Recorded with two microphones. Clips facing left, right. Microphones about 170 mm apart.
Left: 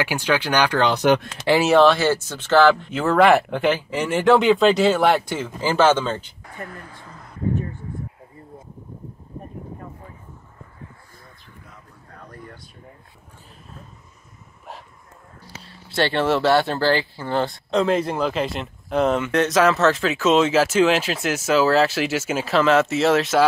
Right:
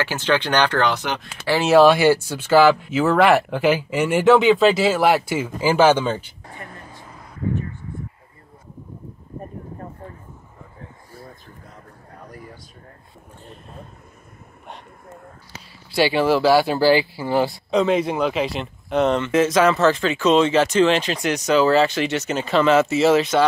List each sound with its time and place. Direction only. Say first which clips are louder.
0.0 s speech: right 1 dB; 10° left (ahead or behind)
1.7 s speech: right 4 dB; 10° right (ahead or behind)
6.7 s vehicle: left 1 dB; 20° right (ahead or behind)
15.6 s speech: right 3 dB; 5° right (ahead or behind)